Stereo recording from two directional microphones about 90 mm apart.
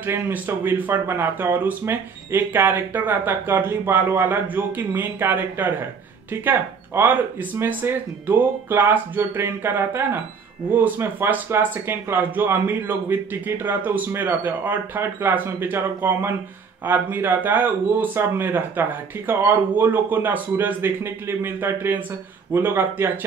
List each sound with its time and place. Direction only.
0.0 s speech: 25° right (ahead or behind)